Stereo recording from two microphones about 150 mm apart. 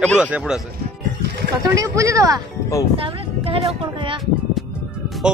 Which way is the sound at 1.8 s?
20° right (ahead or behind).